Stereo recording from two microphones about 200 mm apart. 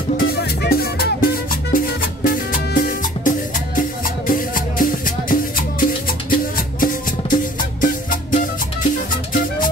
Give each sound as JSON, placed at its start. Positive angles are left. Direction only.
{"t": 0.3, "sound": "music", "side_deg": 50}